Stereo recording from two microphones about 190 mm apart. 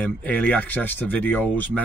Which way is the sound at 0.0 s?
5° left (ahead or behind).